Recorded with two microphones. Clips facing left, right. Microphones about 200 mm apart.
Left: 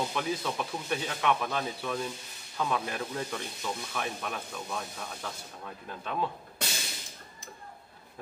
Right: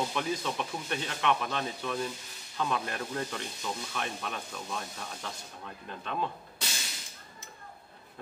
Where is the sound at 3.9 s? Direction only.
5° left (ahead or behind).